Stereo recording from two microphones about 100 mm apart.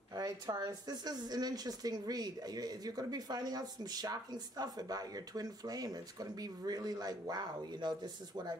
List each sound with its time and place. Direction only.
0.1 s speech: 40° right (ahead or behind)